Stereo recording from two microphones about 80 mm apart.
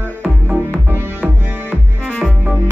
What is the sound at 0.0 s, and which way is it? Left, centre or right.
Music, centre.